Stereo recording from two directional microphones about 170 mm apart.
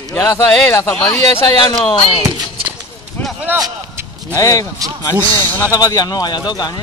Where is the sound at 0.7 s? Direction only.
15° left (ahead or behind).